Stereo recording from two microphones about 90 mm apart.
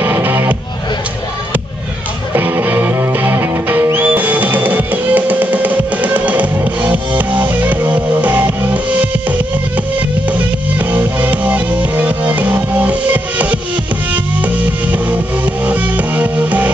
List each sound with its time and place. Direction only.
0.0 s music: 25° right (ahead or behind)
2.3 s music: 20° right (ahead or behind)
10.9 s music: 20° right (ahead or behind)